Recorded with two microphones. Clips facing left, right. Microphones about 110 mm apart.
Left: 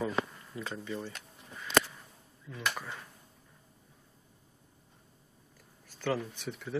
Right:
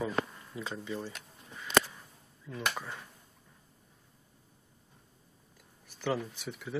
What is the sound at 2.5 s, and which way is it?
Speech, centre (ahead or behind).